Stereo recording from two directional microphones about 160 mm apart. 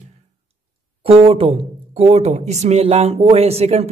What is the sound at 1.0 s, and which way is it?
Speech, 35° right (ahead or behind).